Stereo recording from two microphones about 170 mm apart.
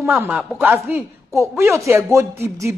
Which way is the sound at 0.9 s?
15° right (ahead or behind).